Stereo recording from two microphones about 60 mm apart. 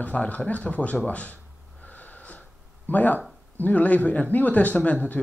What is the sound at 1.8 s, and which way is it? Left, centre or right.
Wheeze, left.